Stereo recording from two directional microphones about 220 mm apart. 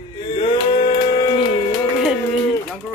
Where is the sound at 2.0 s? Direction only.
Centre (ahead or behind).